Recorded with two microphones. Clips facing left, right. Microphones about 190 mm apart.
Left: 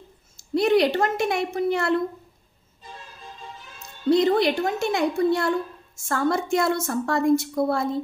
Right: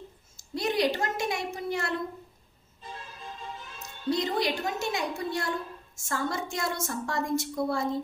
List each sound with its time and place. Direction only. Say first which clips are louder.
0.6 s a woman's voice: left 8 dB; 60° left (ahead or behind)
4.1 s a woman's voice: left 9 dB; 60° left (ahead or behind)